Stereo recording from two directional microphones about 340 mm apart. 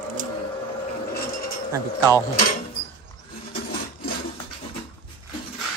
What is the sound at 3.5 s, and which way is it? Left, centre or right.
Wood, left.